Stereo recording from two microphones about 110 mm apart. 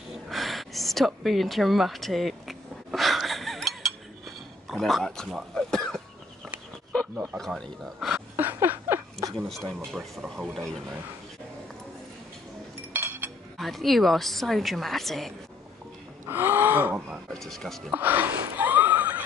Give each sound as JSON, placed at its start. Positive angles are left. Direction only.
{"t": 0.3, "sound": "a sound", "side_deg": 0}
{"t": 7.3, "sound": "speech", "side_deg": 5}
{"t": 8.4, "sound": "a sound", "side_deg": -20}
{"t": 9.5, "sound": "speech", "side_deg": 0}
{"t": 12.9, "sound": "chink", "side_deg": -20}
{"t": 13.6, "sound": "speech", "side_deg": 0}
{"t": 16.3, "sound": "speech", "side_deg": -20}
{"t": 17.3, "sound": "speech", "side_deg": 5}
{"t": 17.9, "sound": "a sound", "side_deg": -15}